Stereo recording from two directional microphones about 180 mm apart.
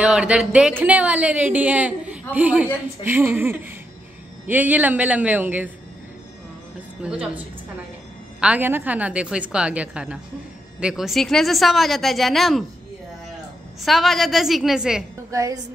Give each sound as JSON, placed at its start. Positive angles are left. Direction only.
{"t": 0.0, "sound": "speech", "side_deg": -5}
{"t": 7.0, "sound": "a woman's voice", "side_deg": -5}
{"t": 13.8, "sound": "a woman's voice", "side_deg": 0}
{"t": 15.3, "sound": "a woman's voice", "side_deg": -20}